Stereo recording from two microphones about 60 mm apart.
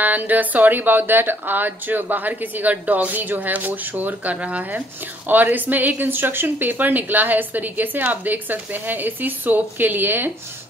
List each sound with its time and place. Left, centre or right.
0.0 s a woman's voice: right